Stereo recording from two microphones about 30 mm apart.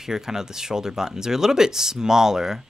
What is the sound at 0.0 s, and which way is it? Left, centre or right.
Speech, centre.